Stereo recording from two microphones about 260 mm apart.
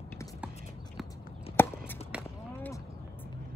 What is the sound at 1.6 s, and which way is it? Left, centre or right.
Walk, centre.